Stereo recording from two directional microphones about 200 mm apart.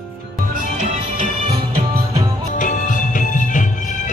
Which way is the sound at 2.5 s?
40° left (ahead or behind).